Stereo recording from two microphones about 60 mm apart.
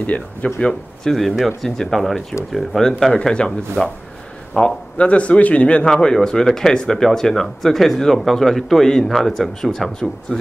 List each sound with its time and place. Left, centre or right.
0.0 s speech: left
1.3 s speech: centre
5.9 s speech: centre